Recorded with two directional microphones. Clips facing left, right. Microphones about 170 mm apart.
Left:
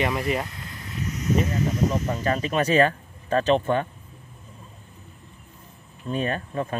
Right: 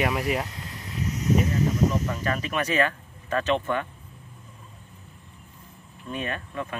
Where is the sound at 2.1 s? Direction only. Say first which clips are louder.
Left 4 dB; 30° left (ahead or behind).